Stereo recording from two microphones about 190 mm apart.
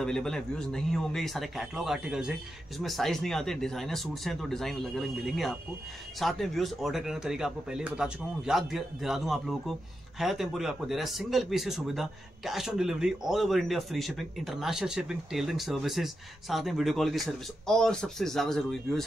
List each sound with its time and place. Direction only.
0.0 s speech: 5° left (ahead or behind)